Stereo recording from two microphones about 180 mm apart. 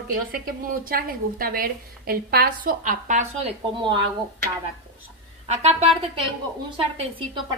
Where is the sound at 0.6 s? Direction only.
50° right (ahead or behind).